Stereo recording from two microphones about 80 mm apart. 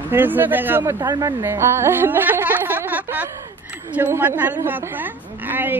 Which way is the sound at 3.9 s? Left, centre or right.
Right.